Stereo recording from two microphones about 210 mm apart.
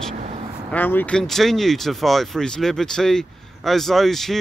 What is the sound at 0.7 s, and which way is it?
Speech, 10° left (ahead or behind).